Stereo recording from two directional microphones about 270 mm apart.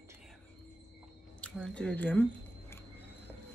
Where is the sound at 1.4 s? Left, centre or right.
Centre.